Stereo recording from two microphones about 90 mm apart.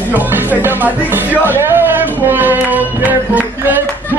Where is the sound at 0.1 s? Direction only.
20° right (ahead or behind).